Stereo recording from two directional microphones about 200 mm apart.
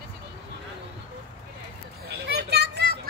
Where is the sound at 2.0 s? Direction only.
55° right (ahead or behind).